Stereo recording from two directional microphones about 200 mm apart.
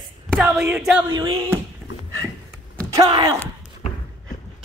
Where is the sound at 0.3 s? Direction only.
5° right (ahead or behind).